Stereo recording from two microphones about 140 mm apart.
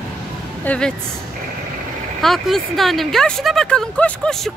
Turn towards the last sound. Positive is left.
turn(degrees=5)  # may be behind; listen again after turning